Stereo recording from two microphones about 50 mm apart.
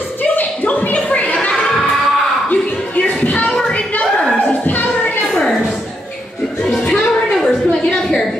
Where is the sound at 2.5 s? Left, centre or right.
Left.